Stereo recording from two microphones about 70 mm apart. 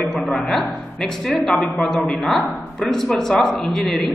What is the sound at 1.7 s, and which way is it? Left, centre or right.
Speech, centre.